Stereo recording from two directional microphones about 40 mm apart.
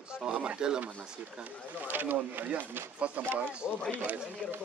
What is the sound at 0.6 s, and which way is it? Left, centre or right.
Speech, right.